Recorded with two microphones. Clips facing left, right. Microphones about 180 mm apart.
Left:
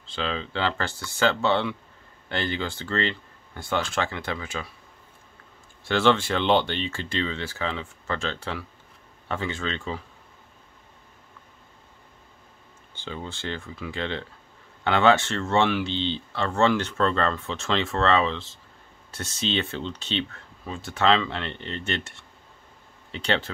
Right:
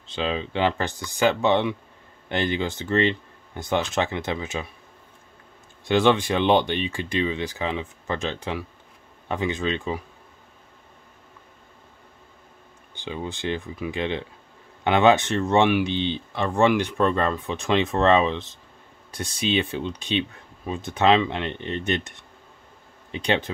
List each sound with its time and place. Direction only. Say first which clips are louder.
0.0 s speech: right 3 dB; 20° right (ahead or behind)
5.9 s speech: right 2 dB; 15° right (ahead or behind)
12.9 s speech: right 4 dB; 15° right (ahead or behind)